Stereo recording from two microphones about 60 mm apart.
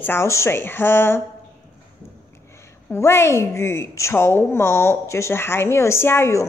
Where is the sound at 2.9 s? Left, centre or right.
Left.